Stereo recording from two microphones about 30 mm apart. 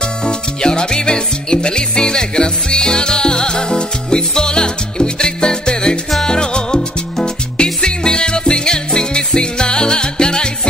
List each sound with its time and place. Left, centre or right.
0.2 s music: left